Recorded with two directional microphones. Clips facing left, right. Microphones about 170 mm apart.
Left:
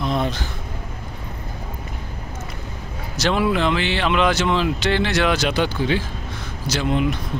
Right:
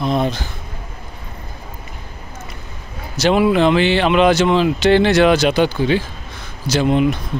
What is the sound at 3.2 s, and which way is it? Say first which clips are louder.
Speech: right 6 dB; 15° right (ahead or behind).